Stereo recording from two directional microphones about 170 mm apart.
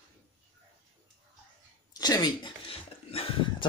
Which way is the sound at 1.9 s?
20° left (ahead or behind).